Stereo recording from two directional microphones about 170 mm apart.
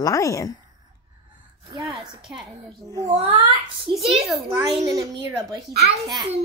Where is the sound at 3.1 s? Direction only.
35° right (ahead or behind).